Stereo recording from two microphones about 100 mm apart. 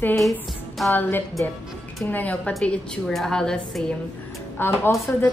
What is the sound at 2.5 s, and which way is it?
A woman's voice, 5° left (ahead or behind).